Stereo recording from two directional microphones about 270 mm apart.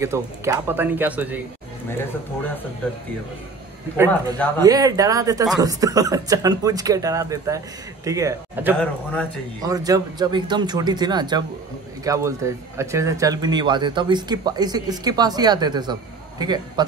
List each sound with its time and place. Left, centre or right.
0.0 s speech: centre
3.9 s speech: centre